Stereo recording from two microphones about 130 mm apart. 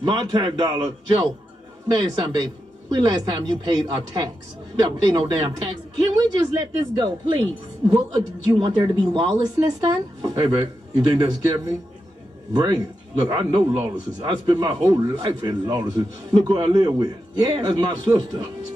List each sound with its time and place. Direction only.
0.0 s a man's voice: 35° right (ahead or behind)